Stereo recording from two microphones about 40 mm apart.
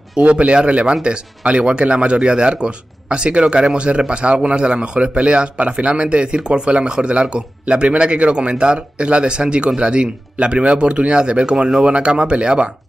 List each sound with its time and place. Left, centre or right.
0.2 s a man's voice: right